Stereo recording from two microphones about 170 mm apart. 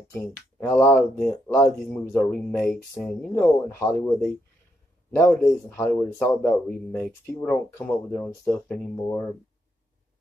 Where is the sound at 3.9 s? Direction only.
20° left (ahead or behind).